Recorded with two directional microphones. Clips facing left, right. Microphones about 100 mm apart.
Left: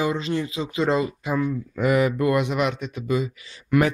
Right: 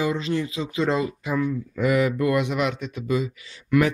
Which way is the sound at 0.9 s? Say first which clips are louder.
Left 1 dB; 35° left (ahead or behind).